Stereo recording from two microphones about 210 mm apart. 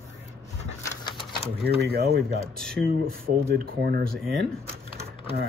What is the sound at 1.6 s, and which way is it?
Speech, 50° right (ahead or behind).